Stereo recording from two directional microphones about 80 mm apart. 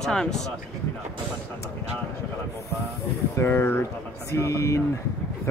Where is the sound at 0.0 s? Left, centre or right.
Centre.